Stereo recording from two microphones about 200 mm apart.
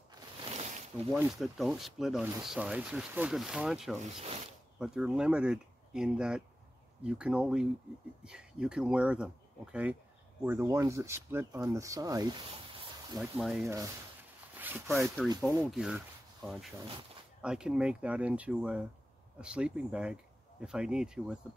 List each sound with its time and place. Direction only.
0.5 s boat: 35° right (ahead or behind)
1.1 s speech: centre (ahead or behind)
4.0 s speech: 30° right (ahead or behind)
4.7 s speech: 5° right (ahead or behind)
13.2 s speech: centre (ahead or behind)
14.5 s zipper: 10° right (ahead or behind)
15.6 s speech: centre (ahead or behind)
17.4 s speech: 5° right (ahead or behind)